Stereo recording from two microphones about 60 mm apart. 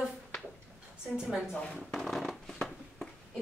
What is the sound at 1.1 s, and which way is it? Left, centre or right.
Speech, centre.